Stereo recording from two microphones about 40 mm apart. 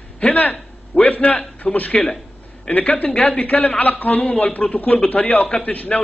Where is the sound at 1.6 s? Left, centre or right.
Centre.